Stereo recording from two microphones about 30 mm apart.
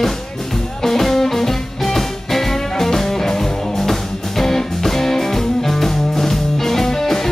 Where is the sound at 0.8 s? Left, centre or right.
Centre.